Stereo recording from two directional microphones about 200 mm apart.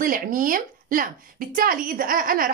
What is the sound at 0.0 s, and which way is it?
A woman's voice, 45° right (ahead or behind).